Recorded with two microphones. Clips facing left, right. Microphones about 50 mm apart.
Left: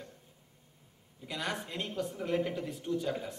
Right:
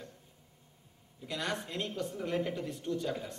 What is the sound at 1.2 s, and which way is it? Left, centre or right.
Speech, centre.